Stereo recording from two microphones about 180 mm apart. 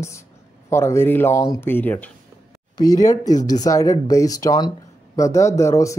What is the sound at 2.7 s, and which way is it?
Speech, 20° left (ahead or behind).